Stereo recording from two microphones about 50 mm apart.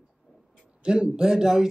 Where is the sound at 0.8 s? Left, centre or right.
Centre.